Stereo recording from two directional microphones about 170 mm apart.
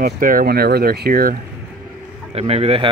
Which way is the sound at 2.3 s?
35° right (ahead or behind).